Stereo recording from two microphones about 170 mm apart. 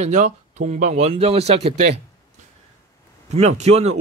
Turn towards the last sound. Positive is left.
turn(degrees=-40)  # may be behind; listen again after turning